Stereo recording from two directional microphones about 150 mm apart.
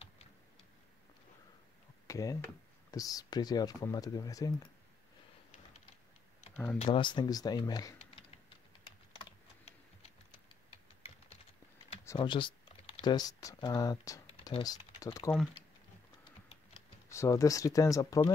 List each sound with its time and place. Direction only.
2.0 s a sound: 20° left (ahead or behind)
2.9 s speech: 25° left (ahead or behind)
6.5 s speech: 10° left (ahead or behind)
6.8 s speech: 30° left (ahead or behind)
12.2 s typing: 35° left (ahead or behind)
13.1 s speech: 25° left (ahead or behind)
14.3 s typing: 35° left (ahead or behind)
14.6 s speech: 25° left (ahead or behind)
17.1 s speech: 20° left (ahead or behind)